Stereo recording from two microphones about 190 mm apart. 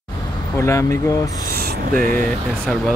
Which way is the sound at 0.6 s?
15° left (ahead or behind).